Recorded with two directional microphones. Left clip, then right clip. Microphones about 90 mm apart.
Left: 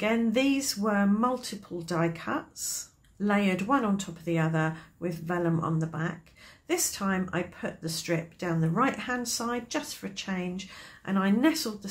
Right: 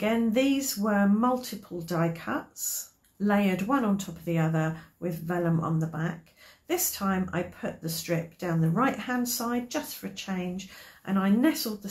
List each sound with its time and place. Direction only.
0.0 s speech: 35° left (ahead or behind)